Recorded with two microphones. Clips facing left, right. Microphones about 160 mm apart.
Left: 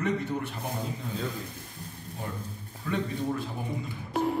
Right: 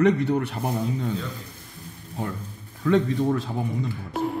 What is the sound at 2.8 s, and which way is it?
Speech, 90° right.